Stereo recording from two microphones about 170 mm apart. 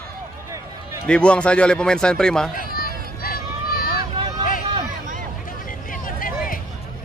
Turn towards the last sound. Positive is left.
turn(degrees=55)  # may be behind; listen again after turning